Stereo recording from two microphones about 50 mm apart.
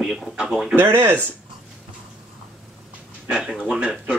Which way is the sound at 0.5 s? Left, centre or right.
Centre.